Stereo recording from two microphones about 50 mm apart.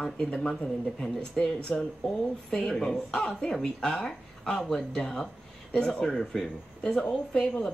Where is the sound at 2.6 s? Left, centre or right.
Centre.